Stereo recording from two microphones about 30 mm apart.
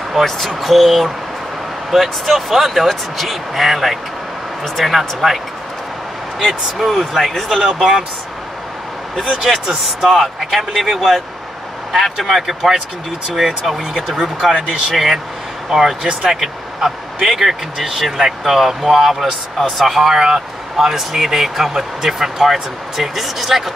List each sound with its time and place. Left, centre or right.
0.6 s speech: centre
6.4 s speech: centre
7.0 s speech: centre
9.3 s speech: centre
9.8 s speech: centre
15.7 s speech: centre
20.2 s speech: right
20.7 s speech: centre